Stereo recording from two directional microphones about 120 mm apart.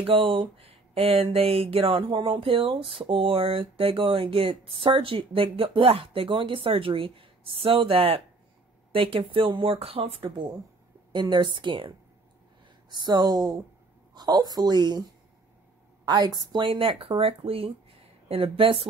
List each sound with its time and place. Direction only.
0.0 s speech: 50° right (ahead or behind)
11.1 s speech: 40° right (ahead or behind)
12.9 s speech: 35° right (ahead or behind)
16.1 s speech: 35° right (ahead or behind)